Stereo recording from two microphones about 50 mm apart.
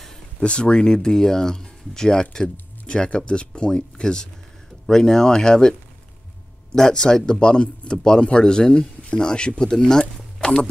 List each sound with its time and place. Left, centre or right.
0.4 s a man's voice: left